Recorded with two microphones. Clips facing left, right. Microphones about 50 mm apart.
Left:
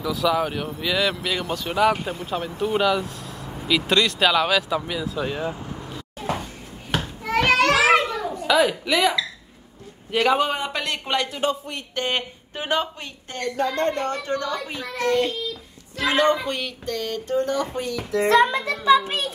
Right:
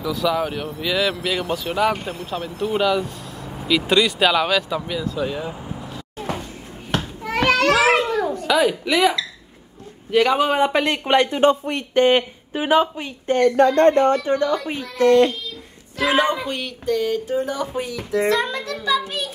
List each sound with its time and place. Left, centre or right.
0.0 s speech: centre
5.9 s a sound: centre
6.9 s children playing: centre
8.5 s speech: centre
10.1 s speech: centre
10.5 s speech: right
11.9 s a woman's voice: right
13.6 s speech: right
14.2 s speech: right
16.0 s speech: centre
18.4 s a child's voice: left